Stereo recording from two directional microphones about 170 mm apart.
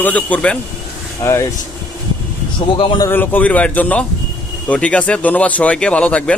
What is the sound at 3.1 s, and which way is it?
Speech, 10° left (ahead or behind).